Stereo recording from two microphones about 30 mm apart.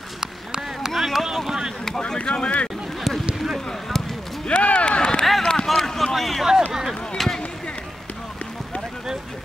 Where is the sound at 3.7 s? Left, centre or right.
Centre.